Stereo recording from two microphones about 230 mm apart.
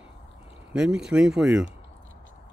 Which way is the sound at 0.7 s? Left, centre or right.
Centre.